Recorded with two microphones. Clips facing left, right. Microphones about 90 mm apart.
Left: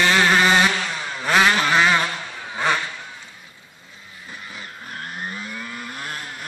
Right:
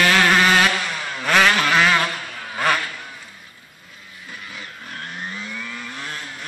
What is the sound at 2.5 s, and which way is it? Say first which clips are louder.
Insect: right 1 dB; 20° left (ahead or behind).